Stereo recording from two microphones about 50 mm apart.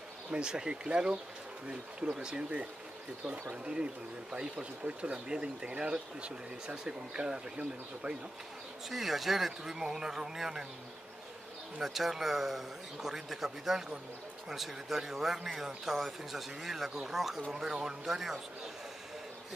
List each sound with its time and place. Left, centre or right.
0.3 s speech: centre
3.6 s speech: centre
8.8 s speech: centre
11.8 s speech: centre